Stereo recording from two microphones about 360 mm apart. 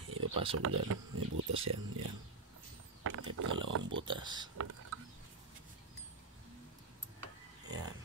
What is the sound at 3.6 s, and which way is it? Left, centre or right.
Pig, right.